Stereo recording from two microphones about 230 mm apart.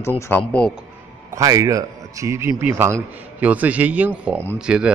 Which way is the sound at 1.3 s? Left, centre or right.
Centre.